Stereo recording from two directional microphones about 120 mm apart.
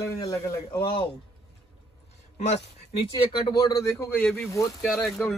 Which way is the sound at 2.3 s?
70° left (ahead or behind).